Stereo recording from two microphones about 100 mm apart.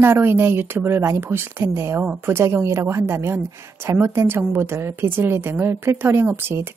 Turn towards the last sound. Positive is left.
turn(degrees=-25)  # may be behind; listen again after turning